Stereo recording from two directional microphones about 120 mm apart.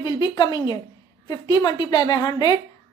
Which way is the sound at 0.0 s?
35° left (ahead or behind).